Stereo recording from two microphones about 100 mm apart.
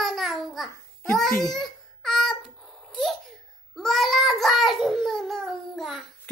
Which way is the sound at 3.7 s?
Centre (ahead or behind).